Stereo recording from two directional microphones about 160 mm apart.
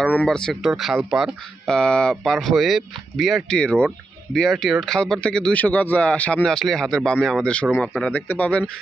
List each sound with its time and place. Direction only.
0.0 s speech: 10° left (ahead or behind)